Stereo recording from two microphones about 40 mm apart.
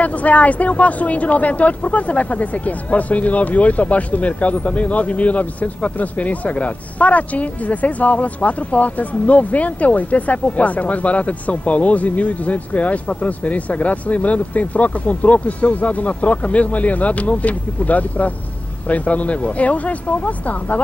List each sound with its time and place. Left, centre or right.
0.0 s speech: left